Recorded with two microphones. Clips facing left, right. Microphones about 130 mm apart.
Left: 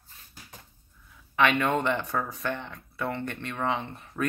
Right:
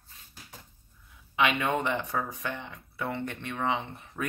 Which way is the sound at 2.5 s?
55° left (ahead or behind).